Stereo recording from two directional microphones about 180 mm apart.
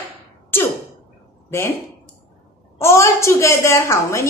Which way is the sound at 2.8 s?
15° left (ahead or behind).